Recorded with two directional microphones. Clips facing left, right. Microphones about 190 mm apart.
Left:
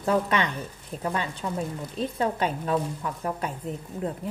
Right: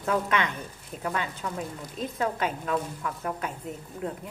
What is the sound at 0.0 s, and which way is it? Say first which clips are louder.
A woman's voice: left 2 dB; 35° left (ahead or behind).